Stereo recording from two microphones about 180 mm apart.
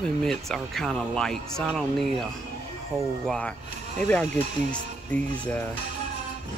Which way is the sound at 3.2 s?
Centre (ahead or behind).